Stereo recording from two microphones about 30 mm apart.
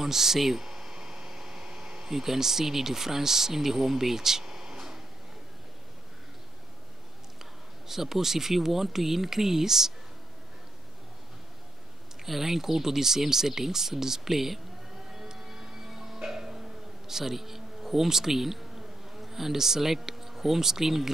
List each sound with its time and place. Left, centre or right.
0.0 s a sound: centre
7.9 s speech: centre
12.3 s speech: centre
15.1 s a sound: centre
16.3 s music: centre
17.1 s speech: centre